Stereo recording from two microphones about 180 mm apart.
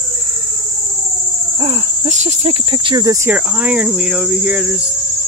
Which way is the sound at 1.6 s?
35° right (ahead or behind).